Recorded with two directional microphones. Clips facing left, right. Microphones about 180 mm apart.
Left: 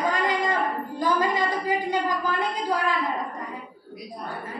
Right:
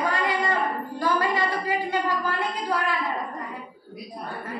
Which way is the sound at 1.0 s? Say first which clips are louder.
Left 1 dB; 20° left (ahead or behind).